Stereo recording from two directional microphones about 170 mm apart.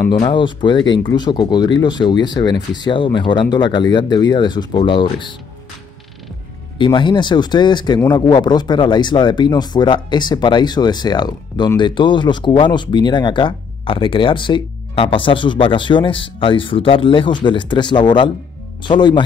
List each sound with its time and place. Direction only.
0.2 s speech: 30° left (ahead or behind)
6.8 s speech: 30° left (ahead or behind)